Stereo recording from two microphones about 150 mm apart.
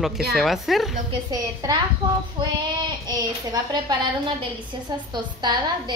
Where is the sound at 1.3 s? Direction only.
25° right (ahead or behind).